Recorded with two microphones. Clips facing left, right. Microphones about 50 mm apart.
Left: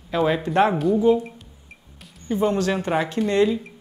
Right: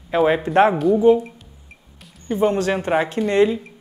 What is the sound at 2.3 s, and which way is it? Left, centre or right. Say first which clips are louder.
Speech: right 2 dB; centre.